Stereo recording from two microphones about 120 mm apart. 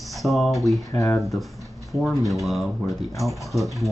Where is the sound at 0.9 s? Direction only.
25° left (ahead or behind).